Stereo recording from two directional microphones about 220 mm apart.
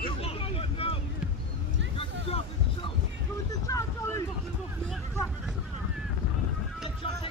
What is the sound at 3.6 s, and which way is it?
Vehicle, 15° left (ahead or behind).